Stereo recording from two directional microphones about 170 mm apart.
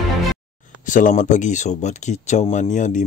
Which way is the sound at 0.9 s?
50° left (ahead or behind).